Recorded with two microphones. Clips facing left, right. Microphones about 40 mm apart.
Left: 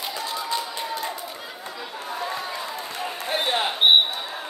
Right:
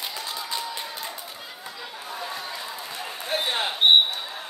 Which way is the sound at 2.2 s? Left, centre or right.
Centre.